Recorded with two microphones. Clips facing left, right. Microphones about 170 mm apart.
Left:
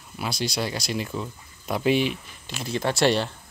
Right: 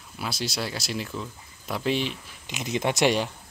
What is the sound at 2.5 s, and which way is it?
Speech, 20° right (ahead or behind).